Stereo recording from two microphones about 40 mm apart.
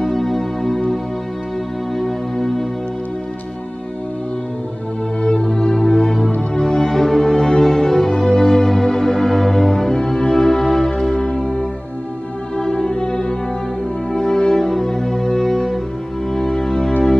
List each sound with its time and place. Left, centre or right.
0.0 s music: centre
2.0 s music: centre
5.2 s music: centre